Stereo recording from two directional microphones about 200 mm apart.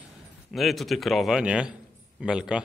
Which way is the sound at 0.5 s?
Centre (ahead or behind).